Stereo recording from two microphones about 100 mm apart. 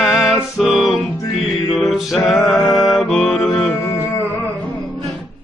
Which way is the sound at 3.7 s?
25° left (ahead or behind).